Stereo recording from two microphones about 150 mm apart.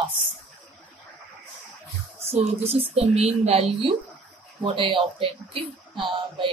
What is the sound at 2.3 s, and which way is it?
A woman's voice, 45° right (ahead or behind).